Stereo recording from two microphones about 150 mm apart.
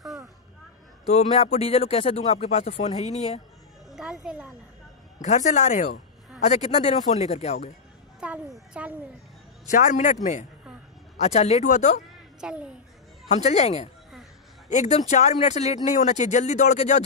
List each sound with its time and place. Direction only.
1.0 s speech: 45° left (ahead or behind)
3.9 s music: 5° right (ahead or behind)
5.2 s speech: 55° left (ahead or behind)
8.2 s a woman's voice: 10° right (ahead or behind)
9.7 s a man's voice: 60° left (ahead or behind)
11.1 s speech: 45° left (ahead or behind)
12.4 s a woman's voice: 5° right (ahead or behind)
13.3 s speech: 50° left (ahead or behind)